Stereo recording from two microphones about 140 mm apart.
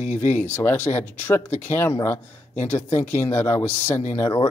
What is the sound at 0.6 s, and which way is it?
Speech, 15° left (ahead or behind).